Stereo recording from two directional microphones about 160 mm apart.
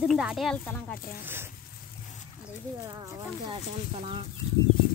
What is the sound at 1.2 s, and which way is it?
Speech, 15° right (ahead or behind).